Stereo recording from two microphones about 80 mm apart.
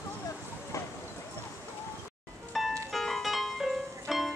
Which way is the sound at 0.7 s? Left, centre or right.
Left.